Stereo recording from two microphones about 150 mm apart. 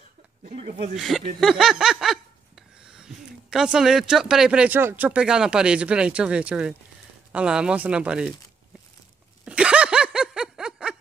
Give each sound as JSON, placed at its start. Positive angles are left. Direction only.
{"t": 0.6, "sound": "speech", "side_deg": -50}
{"t": 0.9, "sound": "speech", "side_deg": 0}
{"t": 1.4, "sound": "snicker", "side_deg": -5}
{"t": 7.3, "sound": "speech", "side_deg": -5}
{"t": 9.4, "sound": "snicker", "side_deg": -5}